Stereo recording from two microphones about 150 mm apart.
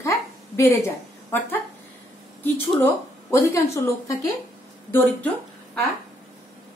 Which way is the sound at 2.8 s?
15° left (ahead or behind).